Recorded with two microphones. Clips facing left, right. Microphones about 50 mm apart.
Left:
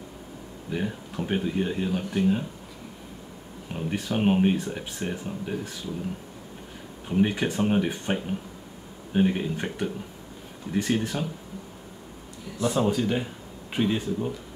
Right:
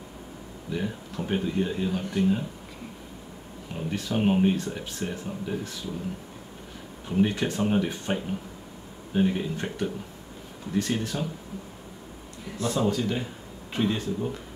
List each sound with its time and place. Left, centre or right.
0.7 s speech: centre
3.7 s speech: centre
7.1 s speech: centre
12.6 s speech: centre